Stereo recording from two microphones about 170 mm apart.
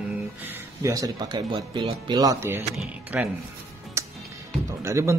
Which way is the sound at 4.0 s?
15° right (ahead or behind).